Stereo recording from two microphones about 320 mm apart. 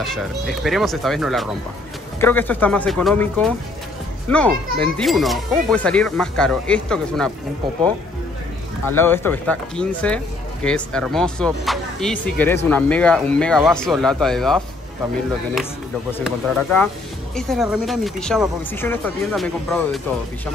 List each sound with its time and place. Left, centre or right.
0.0 s speech: centre
8.9 s speech: centre
16.1 s speech: centre